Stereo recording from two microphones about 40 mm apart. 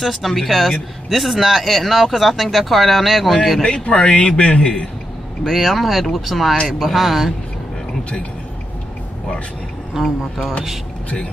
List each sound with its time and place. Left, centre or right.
0.0 s speech: centre
3.6 s a man's voice: left
5.4 s speech: centre
10.0 s speech: centre